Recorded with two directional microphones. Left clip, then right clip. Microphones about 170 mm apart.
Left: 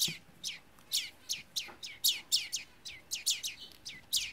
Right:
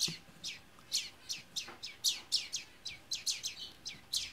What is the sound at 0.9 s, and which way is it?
Bird, 15° left (ahead or behind).